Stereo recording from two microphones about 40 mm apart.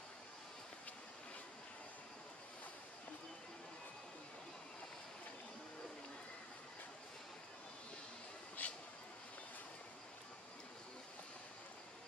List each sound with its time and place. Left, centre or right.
8.6 s vehicle: left